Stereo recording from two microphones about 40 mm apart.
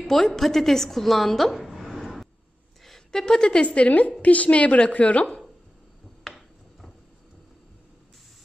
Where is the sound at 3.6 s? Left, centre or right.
Left.